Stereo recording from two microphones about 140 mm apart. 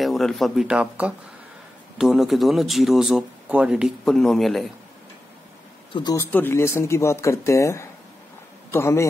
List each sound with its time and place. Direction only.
0.0 s speech: centre (ahead or behind)
6.1 s speech: 15° left (ahead or behind)